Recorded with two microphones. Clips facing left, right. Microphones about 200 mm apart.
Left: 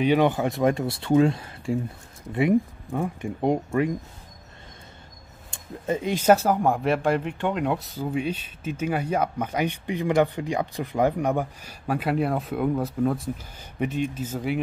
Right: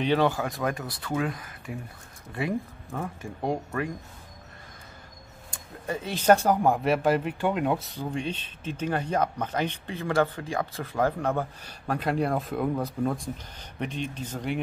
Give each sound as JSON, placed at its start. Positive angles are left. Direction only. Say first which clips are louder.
{"t": 0.0, "sound": "speech", "louder": "left 4 dB", "side_deg": 15}
{"t": 5.5, "sound": "speech", "louder": "left 6 dB", "side_deg": 20}